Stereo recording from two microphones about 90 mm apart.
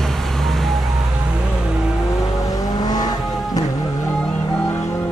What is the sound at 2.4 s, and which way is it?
Vehicle, 40° left (ahead or behind).